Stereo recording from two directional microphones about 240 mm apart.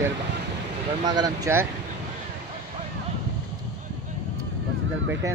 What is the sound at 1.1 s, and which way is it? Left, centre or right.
Speech, centre.